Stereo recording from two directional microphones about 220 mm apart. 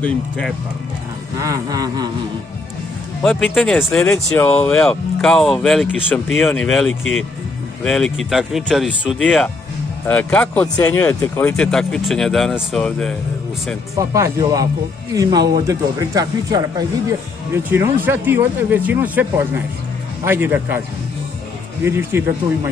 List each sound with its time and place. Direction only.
1.4 s speech: 15° right (ahead or behind)
3.2 s speech: 5° left (ahead or behind)
13.9 s speech: 15° right (ahead or behind)
21.8 s speech: 10° right (ahead or behind)